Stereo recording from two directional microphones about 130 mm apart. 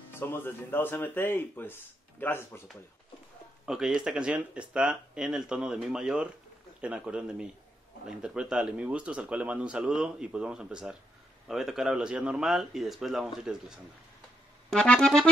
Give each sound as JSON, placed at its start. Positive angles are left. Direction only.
{"t": 0.1, "sound": "speech", "side_deg": 15}
{"t": 3.6, "sound": "speech", "side_deg": -5}
{"t": 14.7, "sound": "accordion", "side_deg": 5}